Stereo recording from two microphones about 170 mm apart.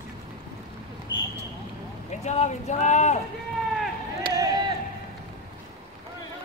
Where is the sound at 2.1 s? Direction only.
40° left (ahead or behind).